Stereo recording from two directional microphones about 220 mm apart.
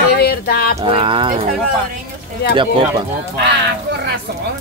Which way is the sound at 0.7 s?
25° right (ahead or behind).